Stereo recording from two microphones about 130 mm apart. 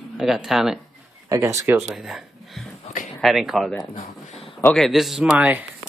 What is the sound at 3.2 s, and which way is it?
Speech, centre (ahead or behind).